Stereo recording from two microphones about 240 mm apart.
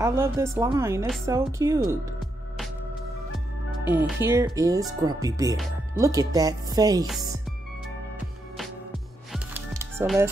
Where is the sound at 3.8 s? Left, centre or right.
Centre.